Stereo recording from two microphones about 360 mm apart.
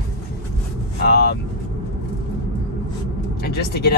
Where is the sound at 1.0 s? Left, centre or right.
Left.